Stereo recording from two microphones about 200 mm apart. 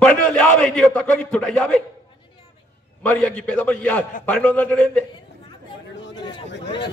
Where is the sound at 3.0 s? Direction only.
5° left (ahead or behind).